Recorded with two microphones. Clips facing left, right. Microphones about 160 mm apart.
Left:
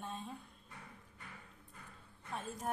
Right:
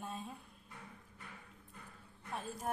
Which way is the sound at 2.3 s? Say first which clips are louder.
Even; centre (ahead or behind).